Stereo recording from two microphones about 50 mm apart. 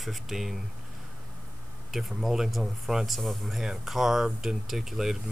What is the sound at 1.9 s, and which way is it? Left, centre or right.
Speech, centre.